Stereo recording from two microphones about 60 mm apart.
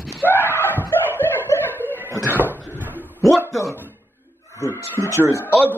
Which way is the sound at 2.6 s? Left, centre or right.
Right.